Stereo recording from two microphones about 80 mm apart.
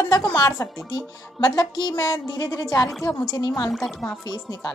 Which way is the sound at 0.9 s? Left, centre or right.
Left.